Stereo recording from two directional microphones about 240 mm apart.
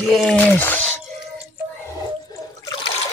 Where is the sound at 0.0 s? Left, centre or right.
Centre.